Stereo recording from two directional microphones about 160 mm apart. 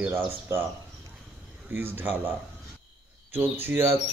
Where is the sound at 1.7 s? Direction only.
10° right (ahead or behind).